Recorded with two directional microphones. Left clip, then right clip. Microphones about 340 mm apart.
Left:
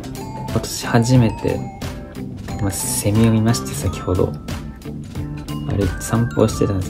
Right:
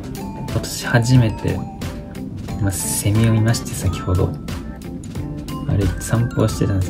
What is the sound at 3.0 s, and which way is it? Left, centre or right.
Speech, centre.